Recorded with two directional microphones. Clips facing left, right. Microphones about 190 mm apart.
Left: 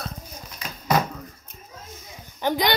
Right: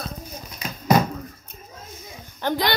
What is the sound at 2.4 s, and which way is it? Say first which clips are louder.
Speech: left 1 dB; 15° left (ahead or behind).